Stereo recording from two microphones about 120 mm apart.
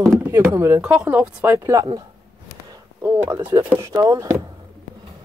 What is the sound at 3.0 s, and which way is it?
Speech, 20° right (ahead or behind).